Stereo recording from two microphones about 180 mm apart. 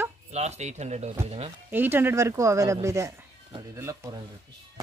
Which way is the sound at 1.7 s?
10° right (ahead or behind).